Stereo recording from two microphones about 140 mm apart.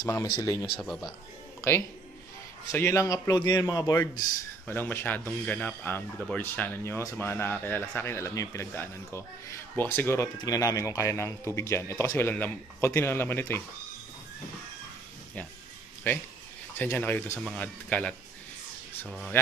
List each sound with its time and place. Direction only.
0.0 s a man's voice: 20° left (ahead or behind)
0.7 s speech: centre (ahead or behind)
1.6 s a man's voice: 20° left (ahead or behind)
4.6 s speech: 15° left (ahead or behind)
16.1 s speech: 15° left (ahead or behind)
19.0 s speech: centre (ahead or behind)